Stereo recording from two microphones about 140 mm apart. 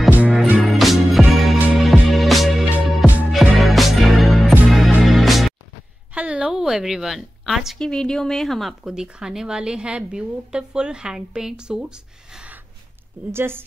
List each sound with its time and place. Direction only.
0.1 s music: 10° right (ahead or behind)
0.7 s music: centre (ahead or behind)
6.1 s a woman's voice: 10° right (ahead or behind)
13.3 s a woman's voice: 15° right (ahead or behind)